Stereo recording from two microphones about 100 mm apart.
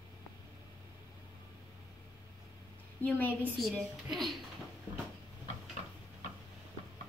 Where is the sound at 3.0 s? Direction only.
20° left (ahead or behind).